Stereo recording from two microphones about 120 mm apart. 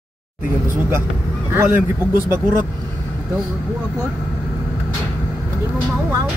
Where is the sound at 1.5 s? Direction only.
15° right (ahead or behind).